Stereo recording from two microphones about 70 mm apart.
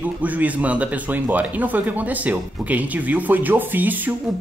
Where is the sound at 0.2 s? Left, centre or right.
Right.